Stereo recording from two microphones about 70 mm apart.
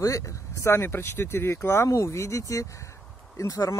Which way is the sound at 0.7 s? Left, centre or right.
Left.